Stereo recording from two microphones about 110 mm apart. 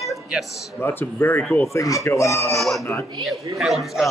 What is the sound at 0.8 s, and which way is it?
Speech, 20° left (ahead or behind).